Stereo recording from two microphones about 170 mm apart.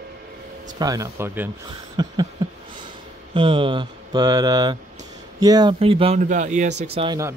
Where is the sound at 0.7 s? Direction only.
20° right (ahead or behind).